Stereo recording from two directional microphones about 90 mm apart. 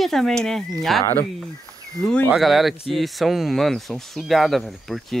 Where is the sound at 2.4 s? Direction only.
Centre (ahead or behind).